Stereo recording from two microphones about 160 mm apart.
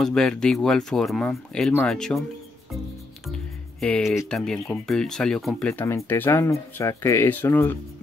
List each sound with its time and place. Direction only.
0.0 s speech: 5° left (ahead or behind)
3.8 s speech: centre (ahead or behind)